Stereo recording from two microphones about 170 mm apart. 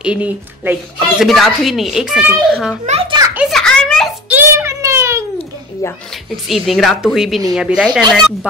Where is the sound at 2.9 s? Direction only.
35° right (ahead or behind).